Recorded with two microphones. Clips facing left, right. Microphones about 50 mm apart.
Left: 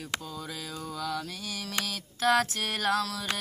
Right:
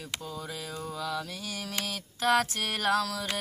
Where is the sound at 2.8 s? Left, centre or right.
Centre.